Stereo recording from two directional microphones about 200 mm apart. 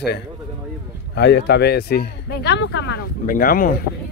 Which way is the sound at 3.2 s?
45° left (ahead or behind).